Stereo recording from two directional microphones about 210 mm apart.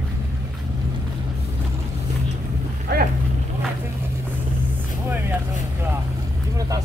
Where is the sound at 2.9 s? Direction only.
45° right (ahead or behind).